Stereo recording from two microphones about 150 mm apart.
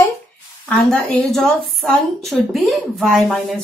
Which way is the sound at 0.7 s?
5° left (ahead or behind).